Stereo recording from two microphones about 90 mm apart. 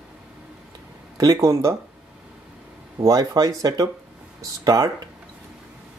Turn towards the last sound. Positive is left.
turn(degrees=-45)  # may be behind; listen again after turning